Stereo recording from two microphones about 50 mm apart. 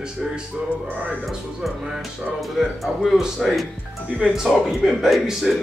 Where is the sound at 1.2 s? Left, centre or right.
Centre.